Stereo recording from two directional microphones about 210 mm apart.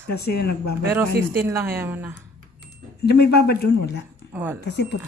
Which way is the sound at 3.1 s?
50° left (ahead or behind).